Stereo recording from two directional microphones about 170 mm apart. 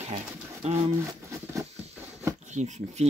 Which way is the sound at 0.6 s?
40° right (ahead or behind).